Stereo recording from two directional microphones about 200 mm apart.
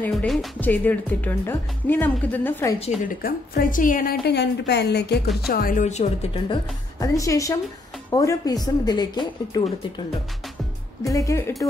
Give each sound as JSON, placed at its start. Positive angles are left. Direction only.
{"t": 0.0, "sound": "speech", "side_deg": 5}
{"t": 3.2, "sound": "a woman's voice", "side_deg": 45}
{"t": 5.5, "sound": "a woman's voice", "side_deg": 45}
{"t": 7.0, "sound": "speech", "side_deg": 15}
{"t": 11.1, "sound": "speech", "side_deg": 15}